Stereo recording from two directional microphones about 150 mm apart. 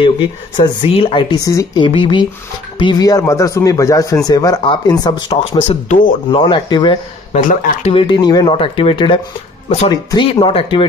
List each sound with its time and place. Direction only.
0.8 s speech: 35° left (ahead or behind)
1.4 s speech: 20° left (ahead or behind)
1.9 s speech: 35° left (ahead or behind)
5.9 s speech: 60° left (ahead or behind)
6.3 s speech: 30° left (ahead or behind)
7.3 s speech: 55° left (ahead or behind)
7.9 s speech: 35° left (ahead or behind)